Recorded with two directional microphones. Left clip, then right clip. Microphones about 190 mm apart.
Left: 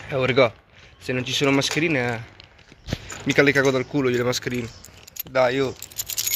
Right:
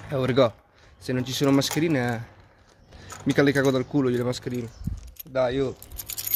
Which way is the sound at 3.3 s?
25° right (ahead or behind).